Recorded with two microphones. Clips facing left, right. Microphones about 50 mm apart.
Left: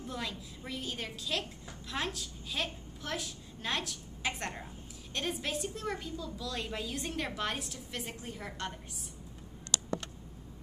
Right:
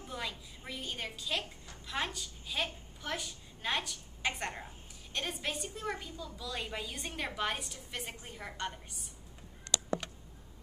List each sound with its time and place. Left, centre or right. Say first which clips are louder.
0.0 s a woman's voice: left 1 dB; centre